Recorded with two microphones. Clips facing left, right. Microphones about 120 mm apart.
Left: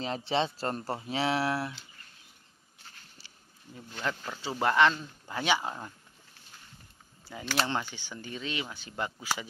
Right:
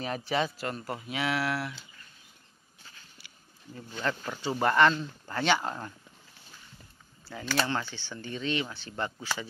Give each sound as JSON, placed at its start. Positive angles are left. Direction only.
{"t": 0.0, "sound": "speech", "side_deg": 25}
{"t": 3.7, "sound": "speech", "side_deg": 5}
{"t": 7.2, "sound": "speech", "side_deg": 15}